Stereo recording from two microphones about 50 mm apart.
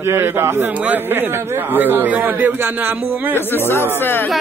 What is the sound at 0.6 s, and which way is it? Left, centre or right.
Speech, right.